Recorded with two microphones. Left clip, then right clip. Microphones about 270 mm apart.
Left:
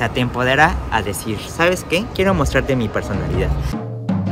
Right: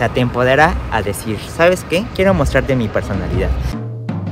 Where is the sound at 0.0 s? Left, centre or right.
Centre.